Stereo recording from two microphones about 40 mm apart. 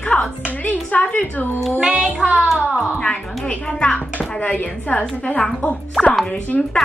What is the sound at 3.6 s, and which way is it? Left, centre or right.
Speech, left.